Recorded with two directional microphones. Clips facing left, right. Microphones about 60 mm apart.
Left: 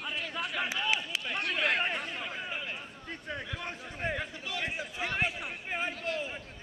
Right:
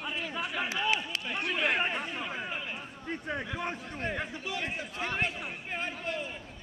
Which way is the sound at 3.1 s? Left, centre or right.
Centre.